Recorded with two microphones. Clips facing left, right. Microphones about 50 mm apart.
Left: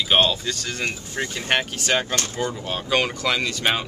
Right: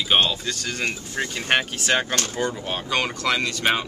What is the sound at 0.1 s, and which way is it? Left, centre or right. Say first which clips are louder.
Speech: left 1 dB; centre.